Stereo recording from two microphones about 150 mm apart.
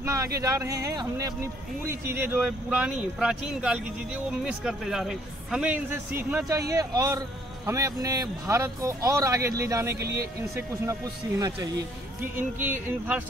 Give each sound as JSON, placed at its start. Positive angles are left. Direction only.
{"t": 0.0, "sound": "a sound", "side_deg": -20}
{"t": 0.4, "sound": "speech", "side_deg": -25}
{"t": 6.7, "sound": "a man's voice", "side_deg": -25}